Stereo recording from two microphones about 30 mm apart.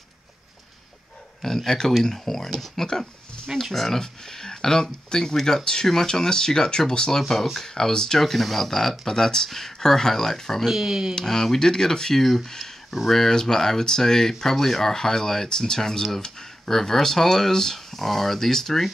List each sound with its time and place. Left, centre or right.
1.4 s a sound: centre
1.9 s speech: centre
5.6 s speech: left
8.2 s speech: centre
10.7 s speech: centre
11.1 s speech: centre
12.2 s speech: centre
12.4 s speech: centre
17.7 s speech: centre